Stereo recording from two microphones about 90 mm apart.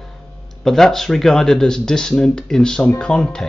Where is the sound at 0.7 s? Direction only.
5° left (ahead or behind).